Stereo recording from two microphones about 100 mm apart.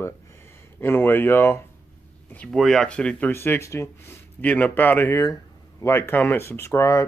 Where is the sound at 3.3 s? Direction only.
25° left (ahead or behind).